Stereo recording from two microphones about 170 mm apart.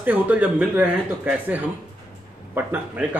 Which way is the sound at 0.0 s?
10° right (ahead or behind).